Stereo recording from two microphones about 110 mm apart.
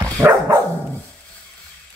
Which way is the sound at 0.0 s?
25° right (ahead or behind).